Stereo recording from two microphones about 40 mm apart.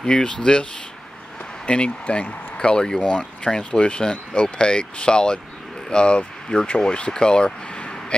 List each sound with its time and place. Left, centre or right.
0.0 s speech: centre
1.7 s speech: left
2.5 s speech: left
3.0 s speech: left